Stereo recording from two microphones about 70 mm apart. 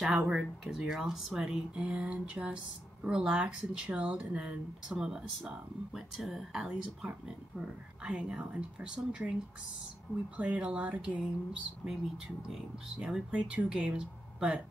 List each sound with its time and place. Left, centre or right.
0.0 s speech: centre
10.3 s speech: centre
11.8 s speech: centre